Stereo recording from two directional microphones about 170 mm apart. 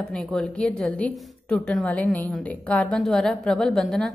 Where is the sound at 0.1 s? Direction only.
5° left (ahead or behind).